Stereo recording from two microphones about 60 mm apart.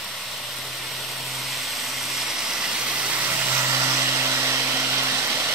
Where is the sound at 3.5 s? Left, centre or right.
Right.